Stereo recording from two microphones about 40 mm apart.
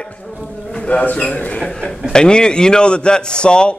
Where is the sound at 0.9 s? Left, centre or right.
Left.